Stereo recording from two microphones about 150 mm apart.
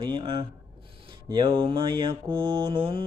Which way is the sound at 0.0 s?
35° right (ahead or behind).